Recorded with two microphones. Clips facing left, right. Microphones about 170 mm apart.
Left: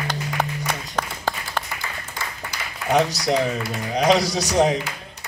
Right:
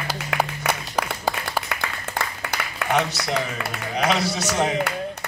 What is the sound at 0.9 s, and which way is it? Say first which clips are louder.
Applause: right 2 dB; 10° right (ahead or behind).